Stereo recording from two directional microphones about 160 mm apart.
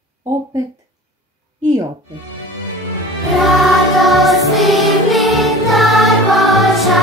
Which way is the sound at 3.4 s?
Centre (ahead or behind).